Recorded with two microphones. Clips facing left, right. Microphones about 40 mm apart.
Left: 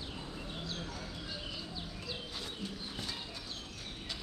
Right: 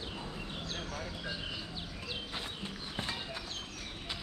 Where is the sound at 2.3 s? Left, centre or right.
Right.